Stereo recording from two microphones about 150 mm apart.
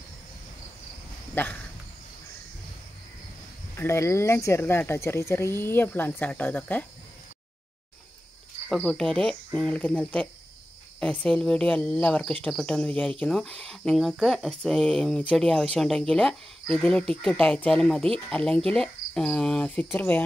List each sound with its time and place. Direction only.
1.3 s a sound: 15° left (ahead or behind)
3.7 s speech: 15° left (ahead or behind)
8.6 s speech: 5° left (ahead or behind)